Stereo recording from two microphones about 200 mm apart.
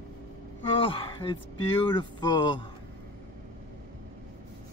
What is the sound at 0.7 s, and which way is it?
Speech, 25° left (ahead or behind).